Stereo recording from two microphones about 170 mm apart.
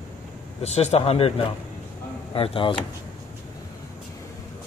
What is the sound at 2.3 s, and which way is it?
Speech, 30° left (ahead or behind).